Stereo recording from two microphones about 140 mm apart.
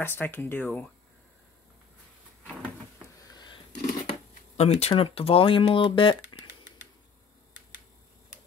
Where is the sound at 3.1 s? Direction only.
30° left (ahead or behind).